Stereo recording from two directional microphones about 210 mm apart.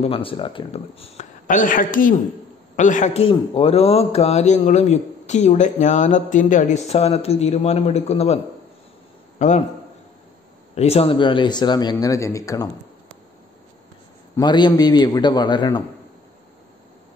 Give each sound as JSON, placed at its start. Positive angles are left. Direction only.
{"t": 0.0, "sound": "a man's voice", "side_deg": 25}
{"t": 9.4, "sound": "a man's voice", "side_deg": 35}
{"t": 10.7, "sound": "speech", "side_deg": 30}
{"t": 14.3, "sound": "speech", "side_deg": 20}